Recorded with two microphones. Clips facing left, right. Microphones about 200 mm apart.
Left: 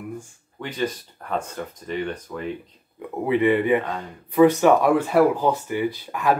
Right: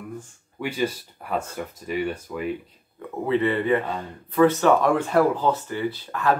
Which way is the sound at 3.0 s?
15° left (ahead or behind).